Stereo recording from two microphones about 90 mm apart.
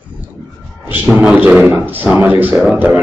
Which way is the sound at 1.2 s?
10° right (ahead or behind).